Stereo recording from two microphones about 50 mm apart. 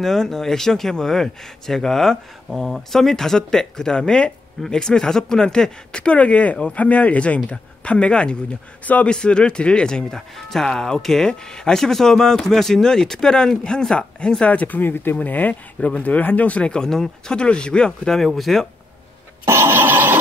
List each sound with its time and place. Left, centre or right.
0.0 s speech: centre; by 9.1 s left
9.1 s speech: centre
14.4 s speech: left
14.8 s speech: left
16.8 s speech: centre
19.4 s a sound: right